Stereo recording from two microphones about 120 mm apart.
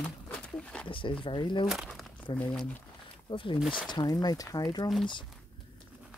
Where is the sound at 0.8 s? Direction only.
45° left (ahead or behind).